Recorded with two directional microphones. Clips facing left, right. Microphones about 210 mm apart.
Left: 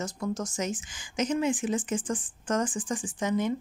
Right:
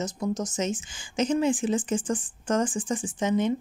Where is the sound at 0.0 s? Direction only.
20° right (ahead or behind).